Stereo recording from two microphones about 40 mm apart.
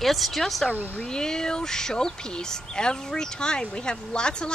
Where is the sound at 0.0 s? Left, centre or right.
Centre.